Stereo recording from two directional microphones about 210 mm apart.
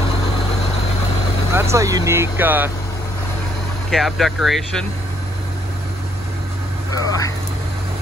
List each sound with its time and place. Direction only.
1.5 s speech: 15° right (ahead or behind)
3.9 s speech: centre (ahead or behind)
6.9 s a sound: 15° left (ahead or behind)